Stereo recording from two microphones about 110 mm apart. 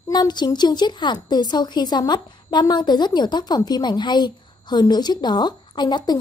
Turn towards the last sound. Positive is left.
turn(degrees=40)  # may be behind; listen again after turning